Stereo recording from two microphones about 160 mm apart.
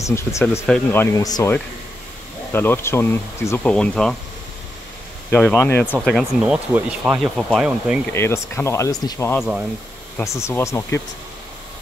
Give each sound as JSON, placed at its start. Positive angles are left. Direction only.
{"t": 0.0, "sound": "speech", "side_deg": 20}
{"t": 2.5, "sound": "speech", "side_deg": 15}
{"t": 5.3, "sound": "speech", "side_deg": 10}
{"t": 5.9, "sound": "speech", "side_deg": 0}
{"t": 7.2, "sound": "speech", "side_deg": 0}
{"t": 8.1, "sound": "speech", "side_deg": 15}
{"t": 9.4, "sound": "speech", "side_deg": -5}
{"t": 10.1, "sound": "speech", "side_deg": 20}